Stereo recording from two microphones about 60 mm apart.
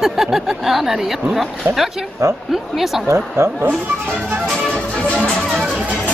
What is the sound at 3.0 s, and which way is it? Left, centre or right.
Speech, right.